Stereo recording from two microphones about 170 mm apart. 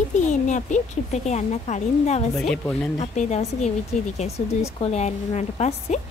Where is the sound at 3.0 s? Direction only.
40° left (ahead or behind).